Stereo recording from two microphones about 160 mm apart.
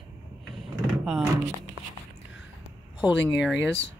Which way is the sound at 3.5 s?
90° left.